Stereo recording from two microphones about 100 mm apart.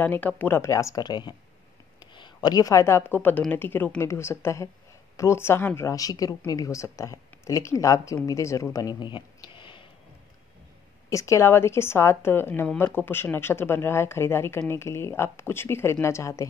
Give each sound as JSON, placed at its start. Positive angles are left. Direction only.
{"t": 0.0, "sound": "a woman's voice", "side_deg": 15}
{"t": 1.0, "sound": "a woman's voice", "side_deg": 50}
{"t": 9.1, "sound": "a sound", "side_deg": 55}
{"t": 11.1, "sound": "speech", "side_deg": 30}